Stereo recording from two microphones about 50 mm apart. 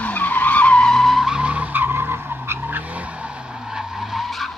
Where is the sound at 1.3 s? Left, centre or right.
Right.